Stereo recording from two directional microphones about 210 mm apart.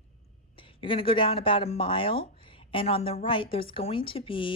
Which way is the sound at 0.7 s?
25° left (ahead or behind).